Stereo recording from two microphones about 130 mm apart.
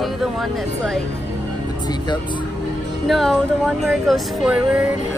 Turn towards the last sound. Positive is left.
turn(degrees=-5)  # may be behind; listen again after turning